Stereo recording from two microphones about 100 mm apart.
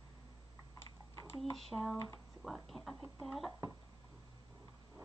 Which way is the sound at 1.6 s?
5° left (ahead or behind).